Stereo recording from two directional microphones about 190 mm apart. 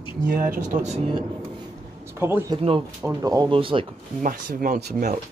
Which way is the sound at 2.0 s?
15° right (ahead or behind).